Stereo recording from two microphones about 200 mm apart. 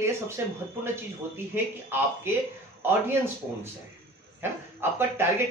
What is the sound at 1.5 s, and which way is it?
A man's voice, 10° right (ahead or behind).